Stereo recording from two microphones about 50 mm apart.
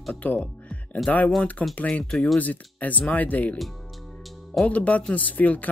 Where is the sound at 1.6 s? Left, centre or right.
Left.